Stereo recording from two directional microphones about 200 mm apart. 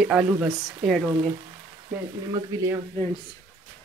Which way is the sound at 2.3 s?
15° right (ahead or behind).